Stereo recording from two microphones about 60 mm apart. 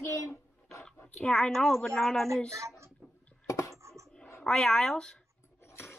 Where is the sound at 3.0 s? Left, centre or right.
Centre.